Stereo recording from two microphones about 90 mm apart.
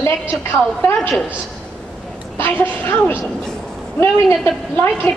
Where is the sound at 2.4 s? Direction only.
25° left (ahead or behind).